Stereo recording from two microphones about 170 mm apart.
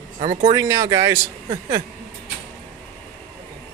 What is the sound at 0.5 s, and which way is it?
Speech, 20° right (ahead or behind).